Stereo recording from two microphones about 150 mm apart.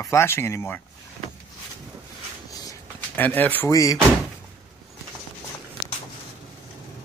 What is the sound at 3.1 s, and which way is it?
Speech, 10° left (ahead or behind).